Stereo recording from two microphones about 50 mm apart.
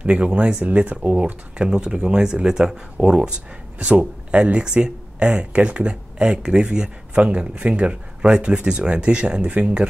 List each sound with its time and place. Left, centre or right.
0.0 s speech: right